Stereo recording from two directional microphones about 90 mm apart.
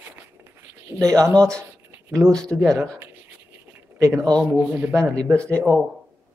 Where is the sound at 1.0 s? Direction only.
10° left (ahead or behind).